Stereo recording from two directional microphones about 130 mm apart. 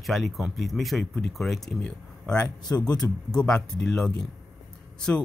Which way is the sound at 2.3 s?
30° left (ahead or behind).